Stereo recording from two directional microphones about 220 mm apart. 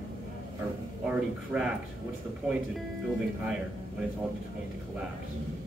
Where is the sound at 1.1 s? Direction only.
5° right (ahead or behind).